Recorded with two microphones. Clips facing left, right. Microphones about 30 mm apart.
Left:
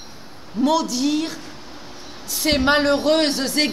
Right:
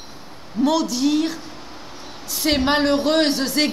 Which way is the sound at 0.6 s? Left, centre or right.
Centre.